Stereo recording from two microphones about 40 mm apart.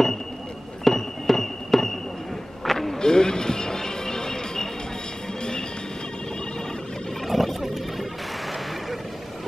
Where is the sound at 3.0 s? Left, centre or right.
Centre.